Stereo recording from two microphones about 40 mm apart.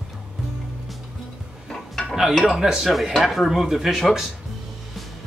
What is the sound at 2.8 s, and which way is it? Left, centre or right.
Speech, centre.